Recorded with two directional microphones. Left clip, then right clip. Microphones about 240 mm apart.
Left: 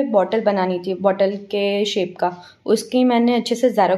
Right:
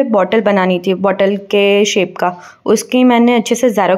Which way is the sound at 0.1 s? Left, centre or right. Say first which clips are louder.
Right 5 dB; right.